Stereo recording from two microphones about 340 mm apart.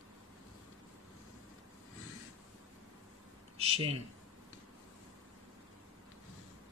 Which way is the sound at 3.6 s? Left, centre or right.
Centre.